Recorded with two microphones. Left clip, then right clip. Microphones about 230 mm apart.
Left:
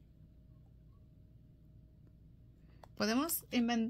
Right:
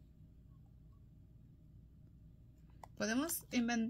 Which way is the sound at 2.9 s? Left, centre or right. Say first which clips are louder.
Left 4 dB; left.